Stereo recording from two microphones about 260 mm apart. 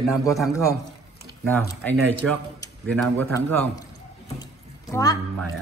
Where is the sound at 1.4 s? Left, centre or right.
Centre.